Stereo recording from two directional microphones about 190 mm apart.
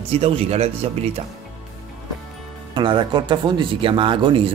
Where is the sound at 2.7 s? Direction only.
25° right (ahead or behind).